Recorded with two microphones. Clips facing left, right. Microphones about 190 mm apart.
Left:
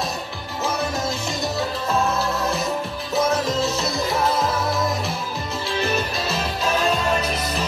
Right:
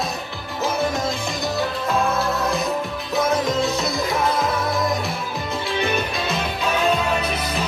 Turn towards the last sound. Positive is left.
turn(degrees=0)  # may be behind; listen again after turning